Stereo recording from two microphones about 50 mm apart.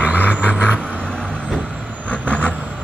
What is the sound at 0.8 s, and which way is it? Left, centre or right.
Vehicle, centre.